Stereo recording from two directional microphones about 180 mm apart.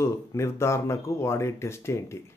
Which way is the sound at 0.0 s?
15° left (ahead or behind).